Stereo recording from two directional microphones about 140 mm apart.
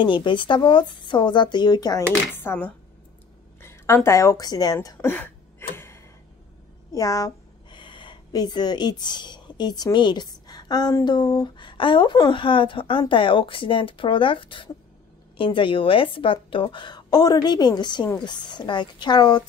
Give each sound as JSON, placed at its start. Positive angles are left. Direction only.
{"t": 0.0, "sound": "a woman's voice", "side_deg": 35}
{"t": 2.3, "sound": "a woman's voice", "side_deg": 15}
{"t": 4.9, "sound": "a sound", "side_deg": 15}
{"t": 6.9, "sound": "a woman's voice", "side_deg": 25}
{"t": 7.7, "sound": "a woman's voice", "side_deg": 35}